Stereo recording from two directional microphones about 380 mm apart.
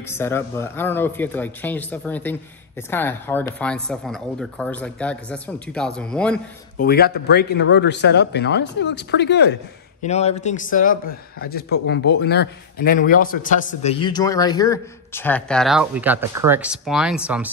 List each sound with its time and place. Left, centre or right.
0.1 s speech: centre
6.8 s speech: left; by 17.5 s centre